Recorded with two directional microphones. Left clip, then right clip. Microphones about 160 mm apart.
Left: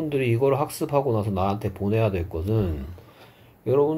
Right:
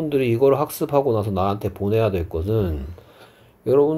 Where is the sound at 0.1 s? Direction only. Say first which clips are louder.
Right 5 dB; 35° right (ahead or behind).